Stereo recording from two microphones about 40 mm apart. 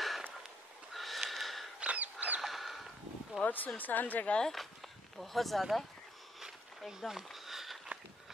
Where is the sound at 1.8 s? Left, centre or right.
Right.